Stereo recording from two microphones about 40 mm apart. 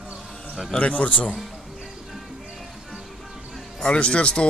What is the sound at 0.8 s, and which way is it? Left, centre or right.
Speech, left.